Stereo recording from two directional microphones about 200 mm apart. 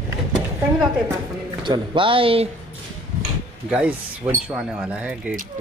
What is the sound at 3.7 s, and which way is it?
Speech, 5° right (ahead or behind).